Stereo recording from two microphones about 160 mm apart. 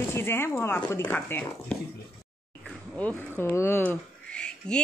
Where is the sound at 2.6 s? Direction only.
5° left (ahead or behind).